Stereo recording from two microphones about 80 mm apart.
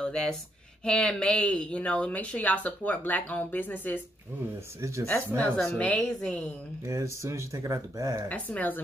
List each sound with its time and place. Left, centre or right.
0.0 s speech: centre
5.4 s a woman's voice: centre
6.9 s speech: right
8.3 s speech: centre